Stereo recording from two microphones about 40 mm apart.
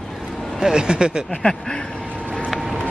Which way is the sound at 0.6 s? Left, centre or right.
Centre.